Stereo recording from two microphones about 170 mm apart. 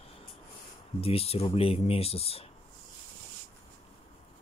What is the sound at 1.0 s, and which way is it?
Speech, 35° left (ahead or behind).